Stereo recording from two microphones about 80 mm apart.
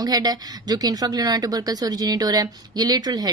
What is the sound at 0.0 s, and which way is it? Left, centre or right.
A woman's voice, right.